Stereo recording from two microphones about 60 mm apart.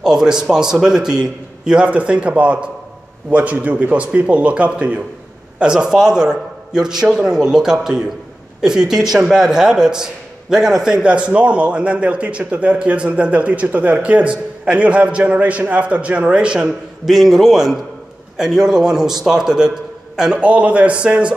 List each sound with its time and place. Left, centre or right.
0.0 s a man's voice: centre
17.0 s a man's voice: centre
20.3 s a man's voice: right